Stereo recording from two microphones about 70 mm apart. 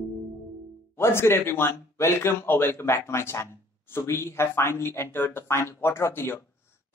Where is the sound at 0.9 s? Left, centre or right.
Left.